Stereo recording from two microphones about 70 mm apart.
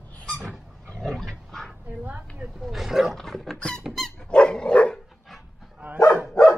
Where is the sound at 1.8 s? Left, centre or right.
Right.